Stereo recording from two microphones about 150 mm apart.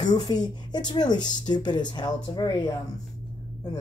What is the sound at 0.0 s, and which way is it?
Speech, 25° left (ahead or behind).